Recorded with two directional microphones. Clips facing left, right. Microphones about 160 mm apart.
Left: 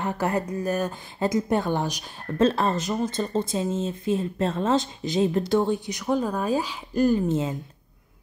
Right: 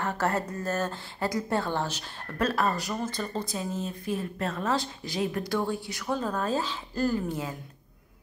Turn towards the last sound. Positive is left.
turn(degrees=25)  # may be behind; listen again after turning